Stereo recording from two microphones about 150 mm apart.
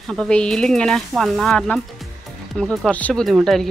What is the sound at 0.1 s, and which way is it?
Speech, 5° left (ahead or behind).